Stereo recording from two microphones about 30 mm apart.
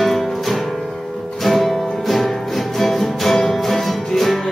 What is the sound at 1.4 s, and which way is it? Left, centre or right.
Music, centre.